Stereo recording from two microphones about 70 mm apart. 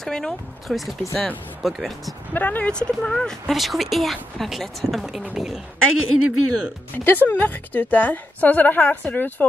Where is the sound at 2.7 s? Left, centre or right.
Centre.